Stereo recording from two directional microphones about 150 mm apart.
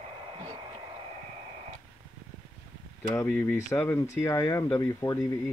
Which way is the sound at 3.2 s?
20° left (ahead or behind).